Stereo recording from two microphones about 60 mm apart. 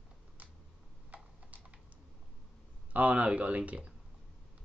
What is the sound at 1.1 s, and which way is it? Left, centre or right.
Typing, right.